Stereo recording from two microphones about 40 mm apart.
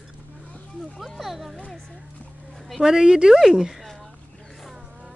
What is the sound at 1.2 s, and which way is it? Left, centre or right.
Speech, centre.